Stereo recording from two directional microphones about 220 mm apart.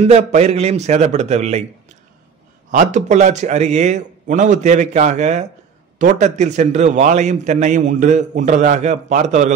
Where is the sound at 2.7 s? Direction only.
35° right (ahead or behind).